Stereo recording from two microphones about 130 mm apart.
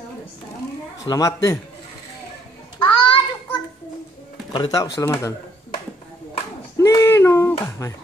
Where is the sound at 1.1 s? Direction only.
25° left (ahead or behind).